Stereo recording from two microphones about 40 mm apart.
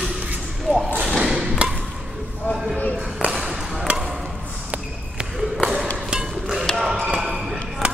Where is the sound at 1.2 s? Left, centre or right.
Right.